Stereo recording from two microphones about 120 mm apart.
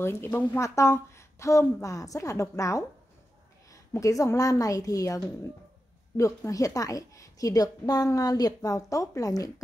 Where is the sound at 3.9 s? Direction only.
25° left (ahead or behind).